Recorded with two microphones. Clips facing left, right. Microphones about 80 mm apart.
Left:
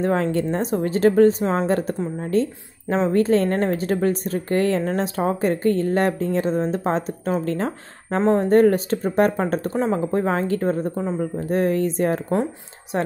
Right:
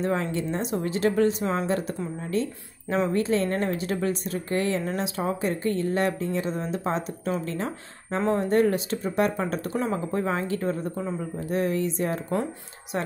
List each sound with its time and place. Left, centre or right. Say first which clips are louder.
0.0 s speech: left 6 dB; left
1.7 s speech: left 5 dB; left
3.4 s speech: left 5 dB; left
8.2 s a woman's voice: left 6 dB; left
8.5 s speech: left 6 dB; left